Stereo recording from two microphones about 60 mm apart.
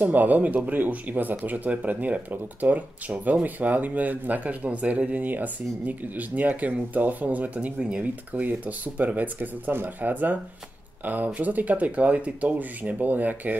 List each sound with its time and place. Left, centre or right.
0.0 s speech: right